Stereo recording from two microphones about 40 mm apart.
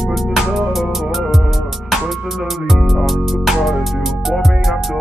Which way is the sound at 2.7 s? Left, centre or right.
Centre.